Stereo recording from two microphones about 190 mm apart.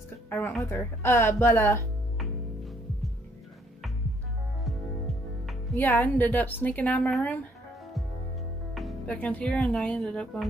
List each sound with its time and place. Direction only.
0.3 s a woman's voice: 5° left (ahead or behind)
5.8 s a woman's voice: 10° left (ahead or behind)
8.7 s speech: 5° left (ahead or behind)